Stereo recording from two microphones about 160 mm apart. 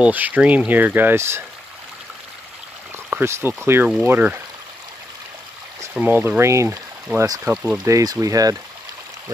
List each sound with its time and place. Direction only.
0.0 s speech: 10° right (ahead or behind)
3.1 s speech: 15° right (ahead or behind)
5.9 s speech: 10° right (ahead or behind)
7.5 s speech: 5° right (ahead or behind)
7.8 s speech: 20° right (ahead or behind)